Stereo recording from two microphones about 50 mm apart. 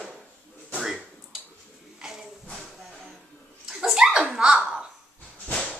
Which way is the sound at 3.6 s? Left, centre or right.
Centre.